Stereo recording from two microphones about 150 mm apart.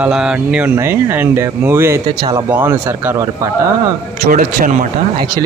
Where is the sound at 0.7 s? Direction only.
15° right (ahead or behind).